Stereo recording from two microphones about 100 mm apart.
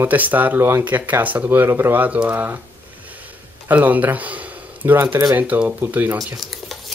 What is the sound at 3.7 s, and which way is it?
Speech, 15° right (ahead or behind).